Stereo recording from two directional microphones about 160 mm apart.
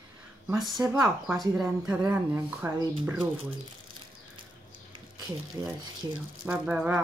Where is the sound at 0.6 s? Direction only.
Centre (ahead or behind).